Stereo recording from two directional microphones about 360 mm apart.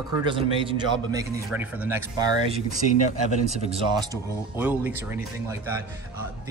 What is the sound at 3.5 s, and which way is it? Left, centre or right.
Speech, centre.